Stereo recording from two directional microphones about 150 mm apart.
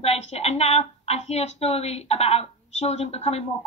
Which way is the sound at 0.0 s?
45° left (ahead or behind).